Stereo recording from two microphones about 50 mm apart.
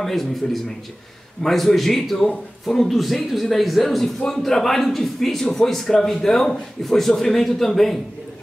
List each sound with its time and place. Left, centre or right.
0.0 s a man's voice: centre